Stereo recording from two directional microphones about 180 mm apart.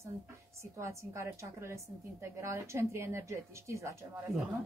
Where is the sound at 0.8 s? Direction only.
15° right (ahead or behind).